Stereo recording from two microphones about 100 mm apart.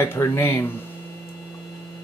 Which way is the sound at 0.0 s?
30° left (ahead or behind).